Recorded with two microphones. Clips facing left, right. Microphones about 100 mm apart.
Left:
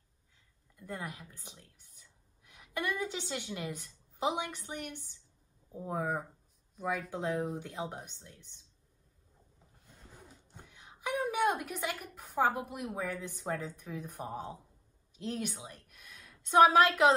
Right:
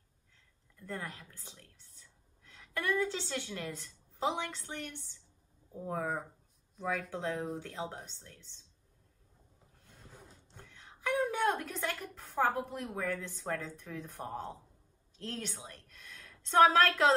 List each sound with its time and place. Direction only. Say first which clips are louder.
0.7 s speech: even; 15° left (ahead or behind)
7.1 s speech: left 2 dB; 15° left (ahead or behind)
10.5 s a sound: even; 15° left (ahead or behind)
15.1 s a woman's voice: left 4 dB; 10° left (ahead or behind)